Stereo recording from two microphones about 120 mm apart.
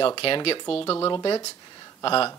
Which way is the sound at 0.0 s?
45° left (ahead or behind).